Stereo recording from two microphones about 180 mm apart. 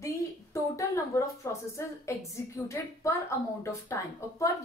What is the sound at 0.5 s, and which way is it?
Speech, 15° left (ahead or behind).